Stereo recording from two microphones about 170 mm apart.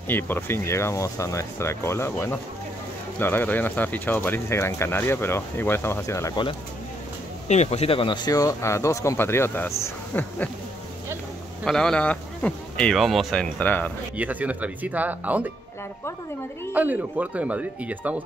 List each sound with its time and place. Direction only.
0.1 s speech: 15° left (ahead or behind)
7.4 s speech: 40° left (ahead or behind); by 10.5 s 15° left (ahead or behind)
11.6 s speech: 5° left (ahead or behind)
14.1 s speech: 10° right (ahead or behind)
16.7 s speech: 10° right (ahead or behind)